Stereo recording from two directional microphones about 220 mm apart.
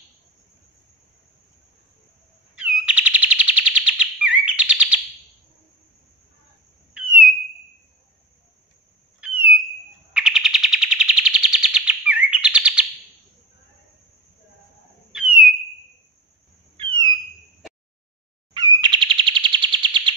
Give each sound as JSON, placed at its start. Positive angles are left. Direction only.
{"t": 2.5, "sound": "bird", "side_deg": -5}
{"t": 6.9, "sound": "owl", "side_deg": -5}
{"t": 9.2, "sound": "bird", "side_deg": -5}
{"t": 15.1, "sound": "a sound", "side_deg": -5}
{"t": 16.7, "sound": "a sound", "side_deg": -20}
{"t": 18.5, "sound": "chirp", "side_deg": -20}